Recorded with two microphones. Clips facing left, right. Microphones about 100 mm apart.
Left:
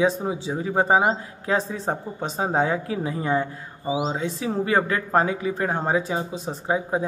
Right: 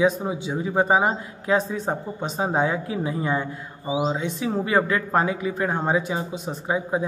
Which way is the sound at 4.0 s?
30° left (ahead or behind).